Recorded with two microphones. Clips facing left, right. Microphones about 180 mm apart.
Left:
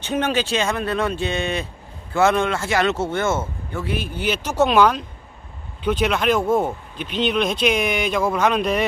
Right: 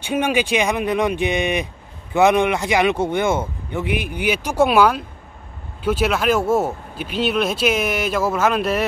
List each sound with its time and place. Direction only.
0.0 s speech: 10° right (ahead or behind)